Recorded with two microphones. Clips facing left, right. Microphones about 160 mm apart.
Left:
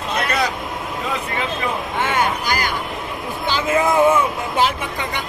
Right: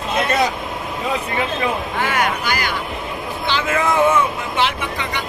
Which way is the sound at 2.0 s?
25° left (ahead or behind).